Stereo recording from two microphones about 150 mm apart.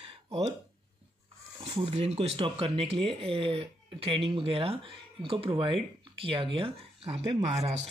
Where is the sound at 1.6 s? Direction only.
40° right (ahead or behind).